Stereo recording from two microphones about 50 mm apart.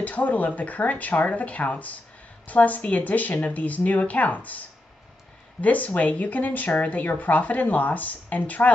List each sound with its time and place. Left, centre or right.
0.0 s speech: left
5.6 s speech: left